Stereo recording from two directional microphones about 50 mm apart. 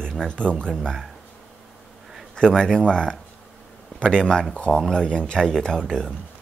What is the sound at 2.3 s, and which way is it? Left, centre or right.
Speech, centre.